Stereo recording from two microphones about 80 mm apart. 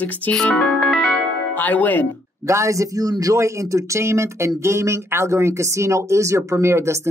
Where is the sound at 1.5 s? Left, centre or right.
Left.